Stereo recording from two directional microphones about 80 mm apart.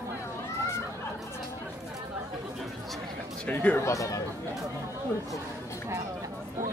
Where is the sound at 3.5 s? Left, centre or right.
Centre.